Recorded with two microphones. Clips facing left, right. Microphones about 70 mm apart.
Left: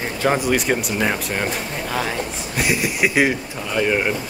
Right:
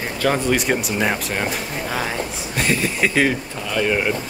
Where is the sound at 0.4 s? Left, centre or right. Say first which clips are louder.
Even; centre.